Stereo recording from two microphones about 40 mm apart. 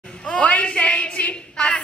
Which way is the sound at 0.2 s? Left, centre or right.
Left.